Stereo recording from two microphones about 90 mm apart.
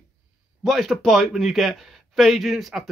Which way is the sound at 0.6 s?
Centre (ahead or behind).